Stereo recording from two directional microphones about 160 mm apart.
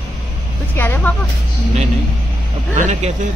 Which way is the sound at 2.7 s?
45° right (ahead or behind).